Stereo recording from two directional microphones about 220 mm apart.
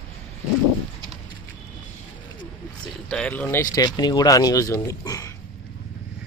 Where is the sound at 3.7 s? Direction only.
15° left (ahead or behind).